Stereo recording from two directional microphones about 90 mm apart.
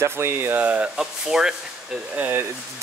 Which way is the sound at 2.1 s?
20° right (ahead or behind).